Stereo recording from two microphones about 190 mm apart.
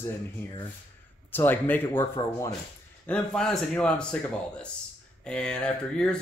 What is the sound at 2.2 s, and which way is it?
Speech, 25° left (ahead or behind).